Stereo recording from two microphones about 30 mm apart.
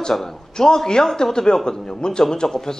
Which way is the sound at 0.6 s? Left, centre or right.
Left.